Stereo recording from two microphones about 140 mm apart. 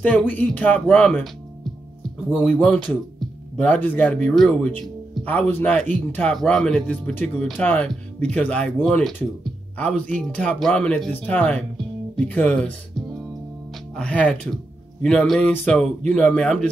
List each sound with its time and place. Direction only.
0.0 s speech: 10° left (ahead or behind)
2.3 s speech: 10° left (ahead or behind)
13.9 s speech: 10° left (ahead or behind)